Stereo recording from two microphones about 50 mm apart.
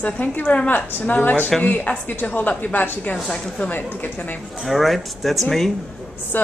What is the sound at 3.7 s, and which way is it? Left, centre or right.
Speech, left.